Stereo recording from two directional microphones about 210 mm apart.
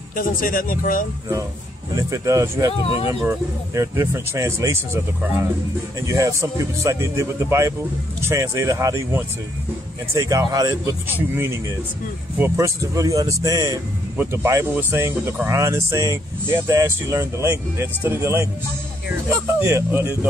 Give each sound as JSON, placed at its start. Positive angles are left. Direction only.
{"t": 0.1, "sound": "speech", "side_deg": 40}
{"t": 2.0, "sound": "speech", "side_deg": -15}
{"t": 2.8, "sound": "speech", "side_deg": 25}
{"t": 3.3, "sound": "speech", "side_deg": -15}
{"t": 19.6, "sound": "speech", "side_deg": -10}